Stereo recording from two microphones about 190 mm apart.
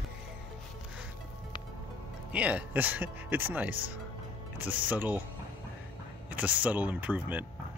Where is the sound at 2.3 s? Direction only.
5° right (ahead or behind).